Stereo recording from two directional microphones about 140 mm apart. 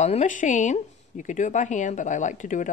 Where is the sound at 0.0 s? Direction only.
60° left (ahead or behind).